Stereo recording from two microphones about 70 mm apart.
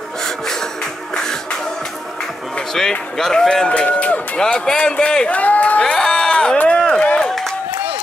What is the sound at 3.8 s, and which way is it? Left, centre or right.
Run, left.